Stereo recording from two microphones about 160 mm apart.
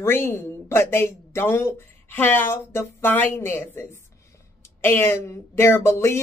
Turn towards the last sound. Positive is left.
turn(degrees=15)  # may be behind; listen again after turning